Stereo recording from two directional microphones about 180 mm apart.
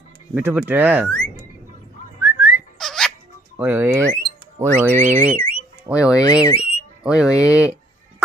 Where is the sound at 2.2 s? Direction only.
10° right (ahead or behind).